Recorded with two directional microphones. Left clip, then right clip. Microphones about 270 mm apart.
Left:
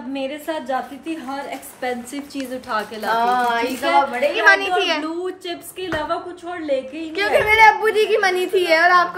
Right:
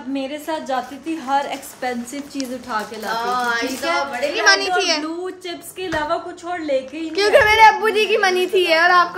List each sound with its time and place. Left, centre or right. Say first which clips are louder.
0.1 s a woman's voice: right 1 dB; centre
3.1 s a woman's voice: left 3 dB; left
3.8 s a woman's voice: left 6 dB; centre